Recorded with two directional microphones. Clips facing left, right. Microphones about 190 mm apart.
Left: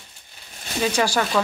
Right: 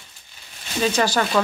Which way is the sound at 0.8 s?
10° left (ahead or behind).